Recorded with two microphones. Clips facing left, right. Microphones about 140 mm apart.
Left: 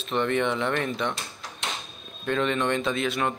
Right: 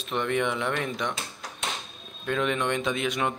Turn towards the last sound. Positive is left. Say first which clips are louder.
# left 1 dB
turn(degrees=-15)  # may be behind; listen again after turning